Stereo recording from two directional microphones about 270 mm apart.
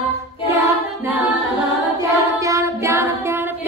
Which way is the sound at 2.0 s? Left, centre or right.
Centre.